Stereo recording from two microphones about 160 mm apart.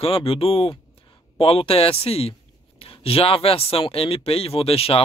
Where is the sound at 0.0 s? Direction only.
35° left (ahead or behind).